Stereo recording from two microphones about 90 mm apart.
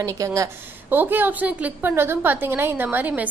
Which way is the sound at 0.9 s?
20° right (ahead or behind).